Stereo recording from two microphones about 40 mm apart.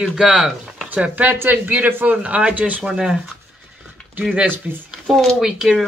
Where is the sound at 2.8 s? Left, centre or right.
Centre.